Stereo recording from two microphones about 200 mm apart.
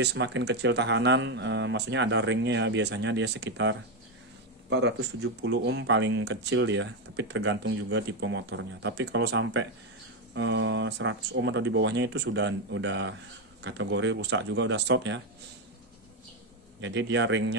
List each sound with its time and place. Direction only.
0.0 s speech: 60° right (ahead or behind)
16.8 s speech: 65° right (ahead or behind)